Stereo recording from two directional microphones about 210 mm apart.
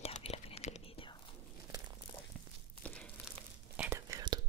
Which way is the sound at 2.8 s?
5° left (ahead or behind).